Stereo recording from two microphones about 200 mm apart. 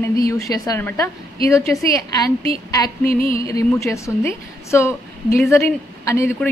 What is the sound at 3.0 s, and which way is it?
Music, 45° left (ahead or behind).